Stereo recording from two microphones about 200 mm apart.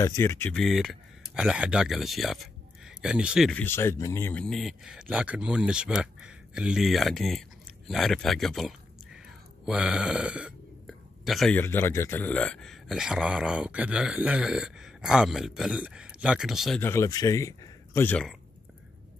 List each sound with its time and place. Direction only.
0.0 s speech: 15° left (ahead or behind); by 16.8 s centre (ahead or behind)
16.8 s speech: 15° left (ahead or behind)